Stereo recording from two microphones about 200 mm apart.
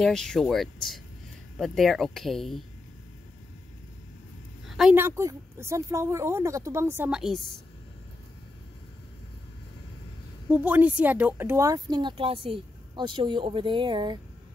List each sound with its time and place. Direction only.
0.0 s speech: 5° left (ahead or behind)
4.6 s speech: centre (ahead or behind)
10.5 s speech: 10° right (ahead or behind)